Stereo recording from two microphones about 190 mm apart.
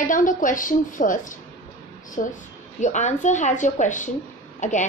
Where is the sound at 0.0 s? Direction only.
45° left (ahead or behind).